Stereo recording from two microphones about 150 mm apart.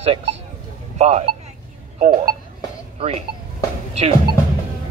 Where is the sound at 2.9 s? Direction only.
40° right (ahead or behind).